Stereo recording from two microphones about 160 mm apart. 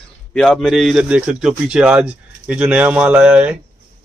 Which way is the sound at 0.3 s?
Centre (ahead or behind).